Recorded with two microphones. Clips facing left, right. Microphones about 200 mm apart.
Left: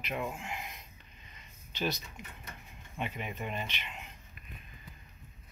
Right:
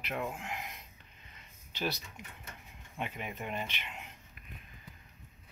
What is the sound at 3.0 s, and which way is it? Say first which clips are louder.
Speech: left 1 dB; 10° right (ahead or behind).